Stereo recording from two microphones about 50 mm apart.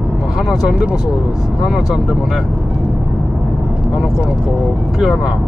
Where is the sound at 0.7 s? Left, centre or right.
Centre.